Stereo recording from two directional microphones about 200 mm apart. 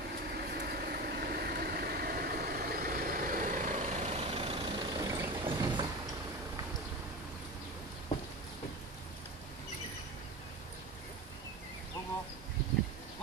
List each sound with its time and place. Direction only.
0.5 s vehicle: 50° right (ahead or behind); by 5.9 s 20° right (ahead or behind)